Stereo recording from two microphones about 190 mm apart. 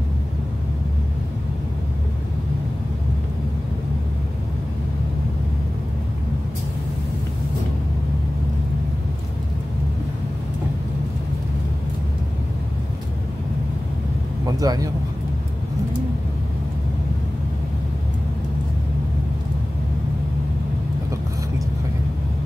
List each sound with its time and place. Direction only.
14.4 s vehicle: 20° right (ahead or behind)